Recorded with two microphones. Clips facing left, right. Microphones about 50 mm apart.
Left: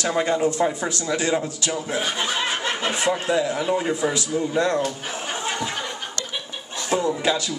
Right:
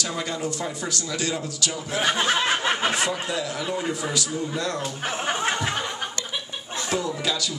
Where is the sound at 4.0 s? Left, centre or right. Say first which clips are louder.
Left 4 dB; left.